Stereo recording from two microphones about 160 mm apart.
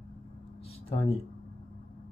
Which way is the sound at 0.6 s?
40° left (ahead or behind).